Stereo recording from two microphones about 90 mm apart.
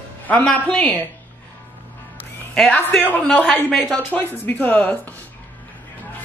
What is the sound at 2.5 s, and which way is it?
Speech, 15° left (ahead or behind).